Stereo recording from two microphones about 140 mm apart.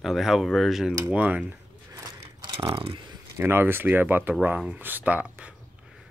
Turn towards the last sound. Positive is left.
turn(degrees=-10)  # may be behind; listen again after turning